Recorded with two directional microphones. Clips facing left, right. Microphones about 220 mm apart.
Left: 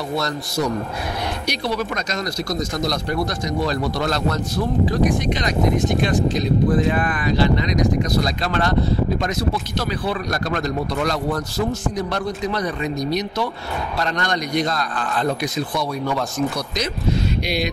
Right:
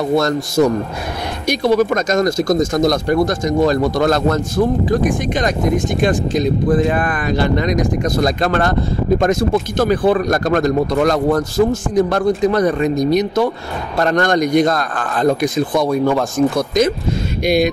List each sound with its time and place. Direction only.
0.1 s speech: 50° right (ahead or behind)